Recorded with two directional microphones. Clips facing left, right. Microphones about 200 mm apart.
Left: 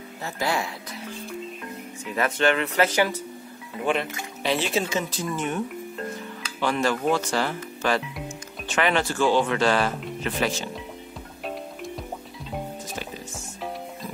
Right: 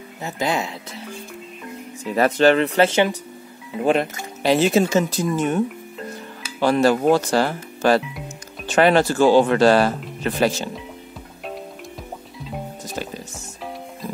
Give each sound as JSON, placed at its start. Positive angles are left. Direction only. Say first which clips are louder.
{"t": 0.2, "sound": "speech", "louder": "right 4 dB", "side_deg": -20}
{"t": 2.1, "sound": "speech", "louder": "right 7 dB", "side_deg": -35}
{"t": 3.8, "sound": "speech", "louder": "right 6 dB", "side_deg": -40}
{"t": 6.6, "sound": "speech", "louder": "right 7 dB", "side_deg": -40}